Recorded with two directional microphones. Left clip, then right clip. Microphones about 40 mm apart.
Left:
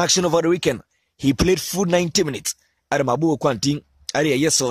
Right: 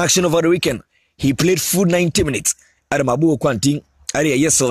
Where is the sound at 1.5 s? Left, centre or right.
Left.